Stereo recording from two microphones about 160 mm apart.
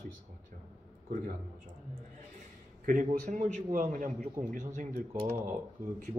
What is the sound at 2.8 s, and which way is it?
A man's voice, 55° right (ahead or behind).